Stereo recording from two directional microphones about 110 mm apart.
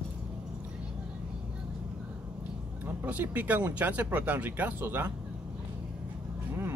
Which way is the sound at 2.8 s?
15° right (ahead or behind).